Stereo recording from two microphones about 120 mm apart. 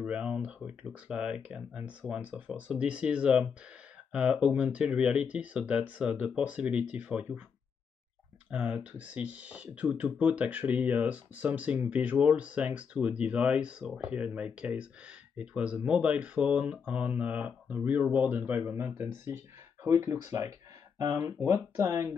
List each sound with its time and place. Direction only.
0.0 s speech: 10° right (ahead or behind)
8.5 s speech: 10° right (ahead or behind)